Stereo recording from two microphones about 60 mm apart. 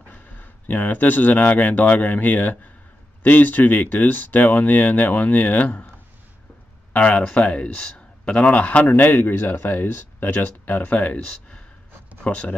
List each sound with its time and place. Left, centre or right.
0.1 s speech: left
6.9 s speech: left
11.0 s speech: left